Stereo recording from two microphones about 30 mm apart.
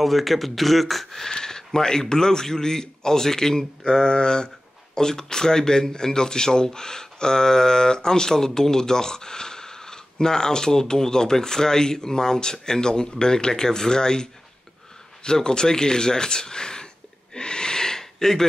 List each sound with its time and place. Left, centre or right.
0.0 s speech: centre
1.3 s speech: centre
15.2 s a sound: left